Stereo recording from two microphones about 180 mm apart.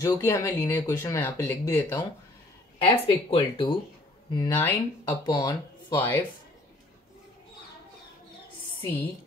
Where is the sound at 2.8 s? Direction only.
30° left (ahead or behind).